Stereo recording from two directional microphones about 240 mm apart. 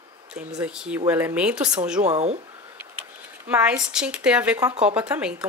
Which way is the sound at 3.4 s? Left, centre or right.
Centre.